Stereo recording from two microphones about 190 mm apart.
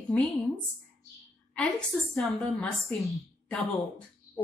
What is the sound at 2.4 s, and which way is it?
A woman's voice, 5° left (ahead or behind).